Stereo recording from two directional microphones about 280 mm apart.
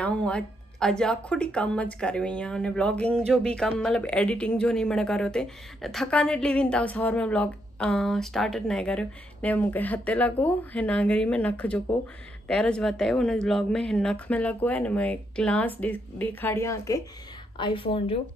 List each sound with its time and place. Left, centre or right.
0.0 s a woman's voice: centre